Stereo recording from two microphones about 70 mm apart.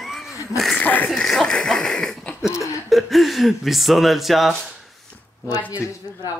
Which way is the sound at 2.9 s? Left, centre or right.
Centre.